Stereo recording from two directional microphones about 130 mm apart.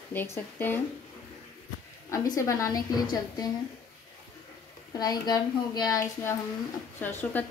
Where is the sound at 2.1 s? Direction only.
25° left (ahead or behind).